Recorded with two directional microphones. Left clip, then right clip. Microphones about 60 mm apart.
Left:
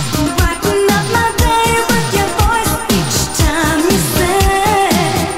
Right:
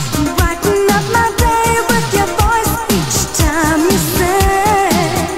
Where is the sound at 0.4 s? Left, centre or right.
Centre.